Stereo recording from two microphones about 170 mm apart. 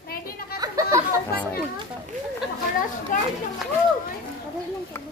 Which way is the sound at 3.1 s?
50° left (ahead or behind).